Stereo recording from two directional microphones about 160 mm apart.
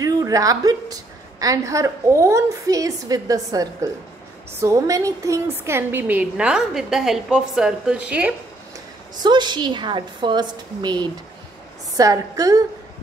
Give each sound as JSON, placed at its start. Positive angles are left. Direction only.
{"t": 0.0, "sound": "a sound", "side_deg": -20}
{"t": 1.4, "sound": "a woman's voice", "side_deg": -20}
{"t": 9.2, "sound": "a woman's voice", "side_deg": -30}